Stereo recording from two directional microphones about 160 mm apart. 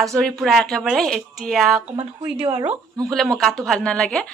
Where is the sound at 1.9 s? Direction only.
35° right (ahead or behind).